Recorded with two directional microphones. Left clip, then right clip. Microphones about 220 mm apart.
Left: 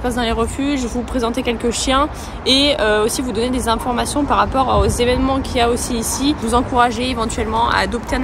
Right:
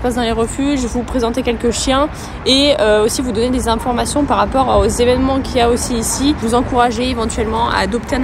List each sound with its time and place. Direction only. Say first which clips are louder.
0.0 s speech: right 2 dB; 15° left (ahead or behind)